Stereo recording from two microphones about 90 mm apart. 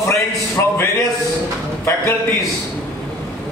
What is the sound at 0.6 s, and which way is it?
Speech, 35° left (ahead or behind).